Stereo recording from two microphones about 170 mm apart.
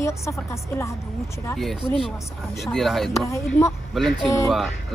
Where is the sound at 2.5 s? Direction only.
Centre (ahead or behind).